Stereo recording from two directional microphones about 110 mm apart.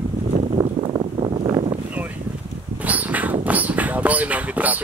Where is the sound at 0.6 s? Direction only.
55° right (ahead or behind).